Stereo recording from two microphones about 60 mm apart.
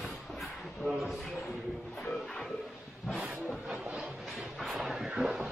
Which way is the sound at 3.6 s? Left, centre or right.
Centre.